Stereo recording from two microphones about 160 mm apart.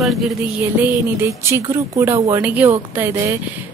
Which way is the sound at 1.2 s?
15° right (ahead or behind).